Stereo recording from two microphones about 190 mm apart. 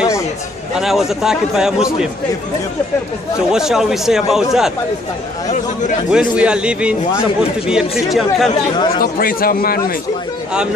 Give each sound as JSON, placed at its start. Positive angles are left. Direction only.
{"t": 0.7, "sound": "a man's voice", "side_deg": 0}
{"t": 3.5, "sound": "a man's voice", "side_deg": 0}
{"t": 6.0, "sound": "a man's voice", "side_deg": -5}
{"t": 8.9, "sound": "a man's voice", "side_deg": 50}